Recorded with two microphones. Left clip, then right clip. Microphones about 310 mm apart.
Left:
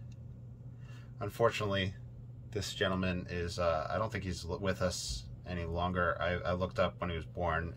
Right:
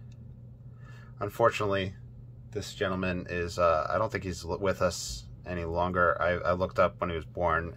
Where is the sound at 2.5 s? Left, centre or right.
Centre.